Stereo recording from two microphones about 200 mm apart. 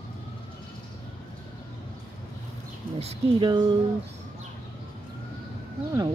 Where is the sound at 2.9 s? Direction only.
25° right (ahead or behind).